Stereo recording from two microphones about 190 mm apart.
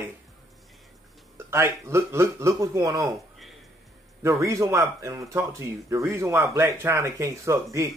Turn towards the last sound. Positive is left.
turn(degrees=-15)  # may be behind; listen again after turning